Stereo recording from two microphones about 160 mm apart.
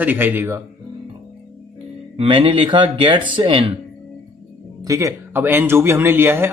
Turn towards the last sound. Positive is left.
turn(degrees=-15)  # may be behind; listen again after turning